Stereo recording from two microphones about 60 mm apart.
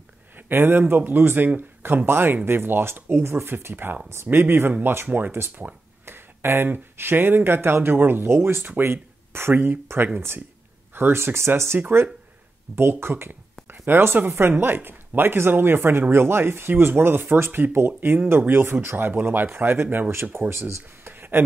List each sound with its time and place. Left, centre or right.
0.5 s speech: right